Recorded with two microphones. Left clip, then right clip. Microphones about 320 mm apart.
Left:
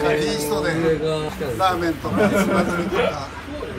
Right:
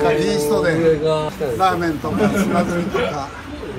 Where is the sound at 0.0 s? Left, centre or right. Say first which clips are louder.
Right 4 dB; centre.